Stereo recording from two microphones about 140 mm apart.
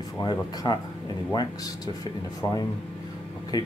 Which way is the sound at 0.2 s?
30° left (ahead or behind).